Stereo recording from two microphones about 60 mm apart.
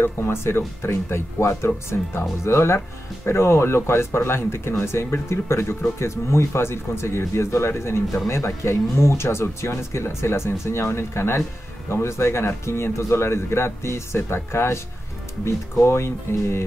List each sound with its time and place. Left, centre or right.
0.0 s speech: left